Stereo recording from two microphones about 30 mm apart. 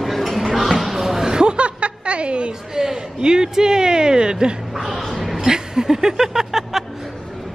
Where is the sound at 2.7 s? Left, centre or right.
Centre.